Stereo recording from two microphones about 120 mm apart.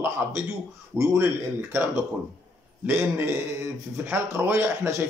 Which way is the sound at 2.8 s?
20° right (ahead or behind).